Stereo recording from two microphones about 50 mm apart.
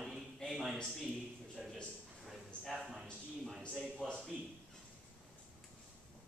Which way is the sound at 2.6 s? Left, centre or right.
Centre.